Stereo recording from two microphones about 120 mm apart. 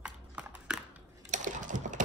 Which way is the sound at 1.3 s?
90° right.